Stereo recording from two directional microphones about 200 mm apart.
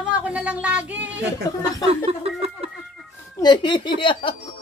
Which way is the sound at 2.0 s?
30° right (ahead or behind).